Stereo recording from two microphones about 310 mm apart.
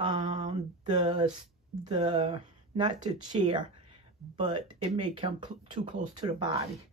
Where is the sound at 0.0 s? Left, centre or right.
Centre.